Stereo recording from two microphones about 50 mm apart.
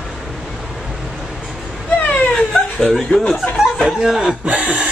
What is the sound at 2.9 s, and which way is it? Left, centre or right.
Speech, centre.